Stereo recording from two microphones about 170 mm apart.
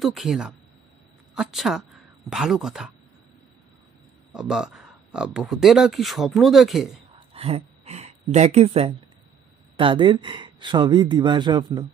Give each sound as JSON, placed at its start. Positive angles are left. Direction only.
{"t": 0.0, "sound": "speech", "side_deg": 0}
{"t": 4.3, "sound": "speech", "side_deg": -5}
{"t": 7.2, "sound": "a sound", "side_deg": -35}
{"t": 9.8, "sound": "speech", "side_deg": -30}